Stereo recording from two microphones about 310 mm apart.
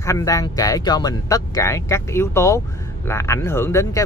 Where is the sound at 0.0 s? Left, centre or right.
Centre.